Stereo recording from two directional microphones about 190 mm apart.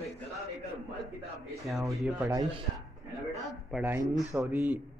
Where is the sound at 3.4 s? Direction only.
5° right (ahead or behind).